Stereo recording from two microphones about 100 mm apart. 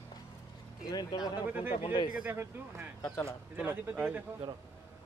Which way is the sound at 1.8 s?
55° left (ahead or behind).